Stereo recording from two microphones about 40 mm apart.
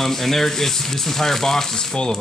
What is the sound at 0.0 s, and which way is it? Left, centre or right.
Speech, centre.